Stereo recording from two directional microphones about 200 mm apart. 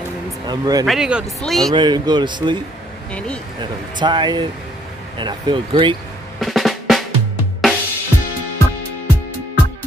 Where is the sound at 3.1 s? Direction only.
5° left (ahead or behind).